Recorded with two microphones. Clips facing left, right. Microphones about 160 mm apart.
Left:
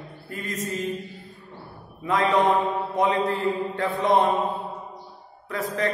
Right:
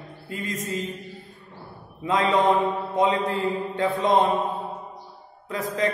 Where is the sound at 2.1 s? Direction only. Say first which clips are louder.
Even; 20° right (ahead or behind).